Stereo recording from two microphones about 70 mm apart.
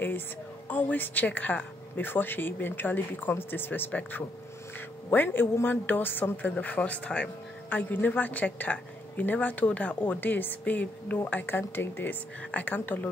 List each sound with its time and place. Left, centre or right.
0.7 s a woman's voice: left